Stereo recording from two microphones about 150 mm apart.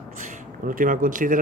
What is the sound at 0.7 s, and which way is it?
Speech, 65° right (ahead or behind).